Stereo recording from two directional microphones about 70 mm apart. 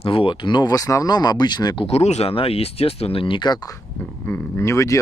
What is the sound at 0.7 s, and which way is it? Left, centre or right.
Speech, left.